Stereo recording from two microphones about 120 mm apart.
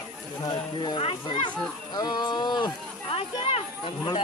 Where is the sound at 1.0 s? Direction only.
50° left (ahead or behind).